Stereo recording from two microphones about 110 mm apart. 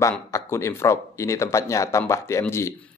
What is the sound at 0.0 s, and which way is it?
Speech, 25° left (ahead or behind).